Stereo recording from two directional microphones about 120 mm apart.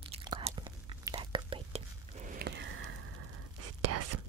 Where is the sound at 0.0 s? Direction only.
45° right (ahead or behind).